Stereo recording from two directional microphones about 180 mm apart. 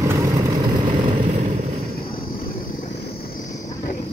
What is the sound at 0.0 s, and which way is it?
Vehicle, 15° right (ahead or behind).